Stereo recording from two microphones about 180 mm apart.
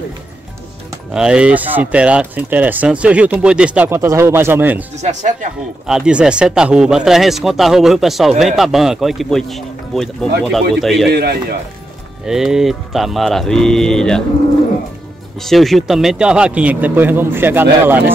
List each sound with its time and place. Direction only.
1.1 s speech: 5° right (ahead or behind)
4.9 s speech: 40° right (ahead or behind)
5.9 s speech: 5° right (ahead or behind)
11.1 s speech: 65° right (ahead or behind)
12.3 s speech: 5° right (ahead or behind)
15.4 s speech: centre (ahead or behind)